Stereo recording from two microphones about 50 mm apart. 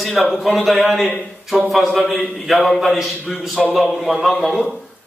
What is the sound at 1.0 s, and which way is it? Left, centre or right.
Speech, left.